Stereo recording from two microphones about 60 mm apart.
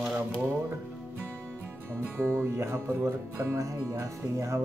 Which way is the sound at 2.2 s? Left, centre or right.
Right.